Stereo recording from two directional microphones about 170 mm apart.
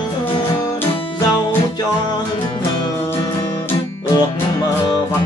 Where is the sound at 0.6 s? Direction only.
20° left (ahead or behind).